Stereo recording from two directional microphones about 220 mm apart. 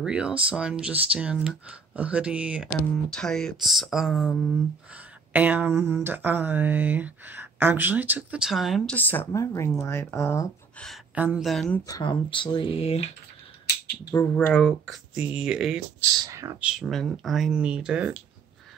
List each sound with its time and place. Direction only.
0.0 s speech: 5° right (ahead or behind); by 10.9 s 10° left (ahead or behind)
10.9 s speech: 5° right (ahead or behind); by 13.0 s 25° left (ahead or behind)
14.1 s speech: 10° left (ahead or behind)
16.0 s speech: 15° right (ahead or behind)
16.7 s speech: centre (ahead or behind)